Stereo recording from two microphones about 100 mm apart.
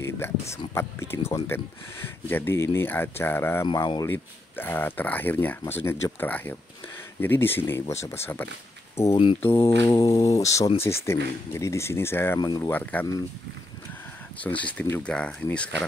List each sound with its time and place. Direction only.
0.2 s speech: 25° left (ahead or behind)
3.7 s speech: 45° left (ahead or behind)
4.0 s speech: 20° left (ahead or behind)
9.1 s speech: 70° left (ahead or behind)
9.4 s speech: 25° left (ahead or behind)
12.4 s speech: 45° left (ahead or behind)
12.6 s speech: 15° left (ahead or behind)
14.4 s speech: 15° left (ahead or behind)